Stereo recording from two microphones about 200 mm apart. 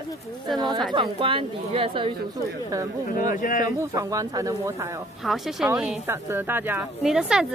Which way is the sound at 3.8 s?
15° right (ahead or behind).